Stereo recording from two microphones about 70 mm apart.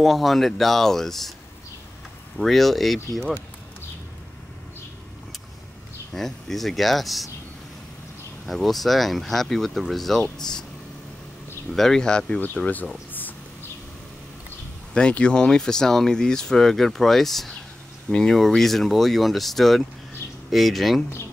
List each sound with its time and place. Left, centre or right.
0.0 s speech: centre
2.3 s speech: centre
6.1 s speech: centre
8.5 s speech: centre
11.7 s speech: centre
13.1 s a sound: left
15.0 s speech: centre